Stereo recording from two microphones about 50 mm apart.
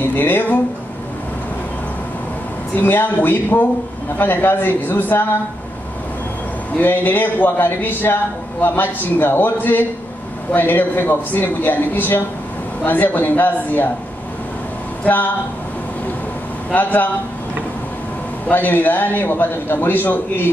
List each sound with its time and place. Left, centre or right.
0.0 s a sound: left
2.7 s a man's voice: left
6.8 s a man's voice: left
15.0 s a man's voice: left
16.7 s a man's voice: left
18.5 s a man's voice: left